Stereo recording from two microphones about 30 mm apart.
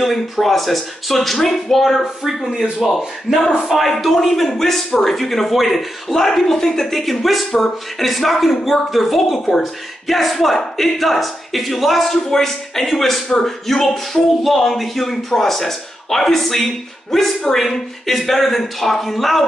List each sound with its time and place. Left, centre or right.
0.0 s speech: centre
3.3 s speech: right
3.7 s a man's voice: centre